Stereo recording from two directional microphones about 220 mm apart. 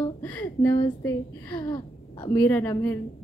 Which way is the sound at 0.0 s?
15° left (ahead or behind).